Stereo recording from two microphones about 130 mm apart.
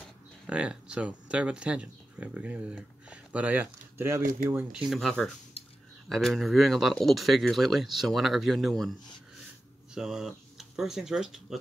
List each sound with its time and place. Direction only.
0.5 s speech: 10° right (ahead or behind)
4.7 s speech: centre (ahead or behind)
9.9 s speech: centre (ahead or behind)